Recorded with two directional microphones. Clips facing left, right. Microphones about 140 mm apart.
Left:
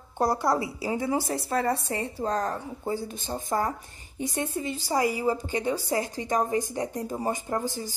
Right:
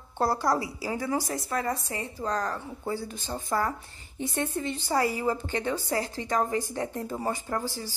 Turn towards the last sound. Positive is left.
turn(degrees=20)  # may be behind; listen again after turning